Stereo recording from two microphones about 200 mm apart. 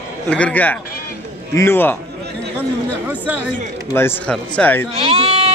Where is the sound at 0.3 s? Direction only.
5° left (ahead or behind).